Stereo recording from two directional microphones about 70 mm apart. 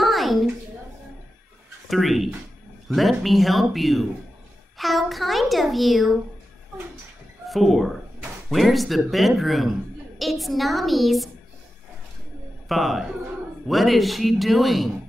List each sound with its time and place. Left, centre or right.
0.0 s a sound: centre
1.9 s speech: centre
7.4 s speech: centre
12.6 s speech: centre